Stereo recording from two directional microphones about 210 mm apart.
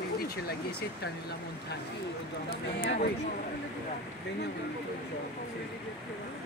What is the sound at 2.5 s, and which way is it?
Speech, 50° left (ahead or behind).